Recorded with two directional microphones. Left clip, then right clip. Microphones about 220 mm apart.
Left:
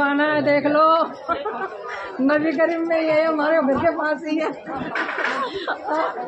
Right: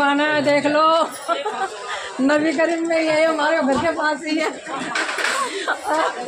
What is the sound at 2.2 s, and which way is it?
A man's voice, 40° right (ahead or behind).